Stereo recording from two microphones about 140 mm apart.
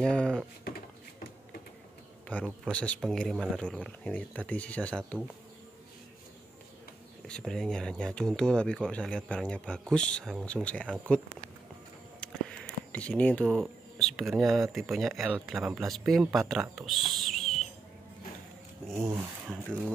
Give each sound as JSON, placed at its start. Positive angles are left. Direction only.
{"t": 0.0, "sound": "speech", "side_deg": 5}
{"t": 2.6, "sound": "speech", "side_deg": 10}
{"t": 7.2, "sound": "speech", "side_deg": 5}
{"t": 12.2, "sound": "speech", "side_deg": 10}
{"t": 19.4, "sound": "speech", "side_deg": -5}